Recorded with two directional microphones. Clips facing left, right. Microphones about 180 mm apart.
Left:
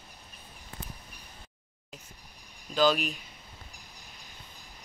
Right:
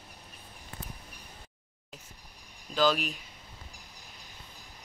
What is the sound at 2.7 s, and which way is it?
Speech, centre (ahead or behind).